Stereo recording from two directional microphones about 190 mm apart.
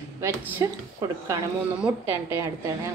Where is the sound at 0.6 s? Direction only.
15° right (ahead or behind).